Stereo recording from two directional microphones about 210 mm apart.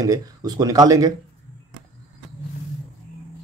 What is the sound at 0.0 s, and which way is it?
Speech, 15° right (ahead or behind).